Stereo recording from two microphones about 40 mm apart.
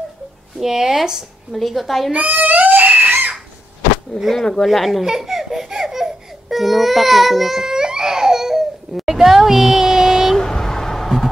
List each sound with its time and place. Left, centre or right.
0.6 s speech: centre
1.5 s a woman's voice: centre
2.1 s crying: right
4.6 s a woman's voice: centre
5.0 s baby cry: centre
7.6 s baby cry: centre
10.3 s vehicle: centre